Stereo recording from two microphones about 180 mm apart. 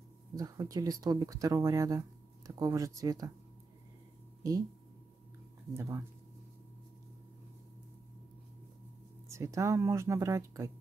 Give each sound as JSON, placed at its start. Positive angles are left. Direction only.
{"t": 0.4, "sound": "speech", "side_deg": -20}
{"t": 4.4, "sound": "speech", "side_deg": -20}
{"t": 5.8, "sound": "speech", "side_deg": -15}
{"t": 9.3, "sound": "speech", "side_deg": -15}